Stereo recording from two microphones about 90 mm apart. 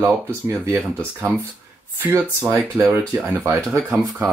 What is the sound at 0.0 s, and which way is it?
Speech, 25° right (ahead or behind).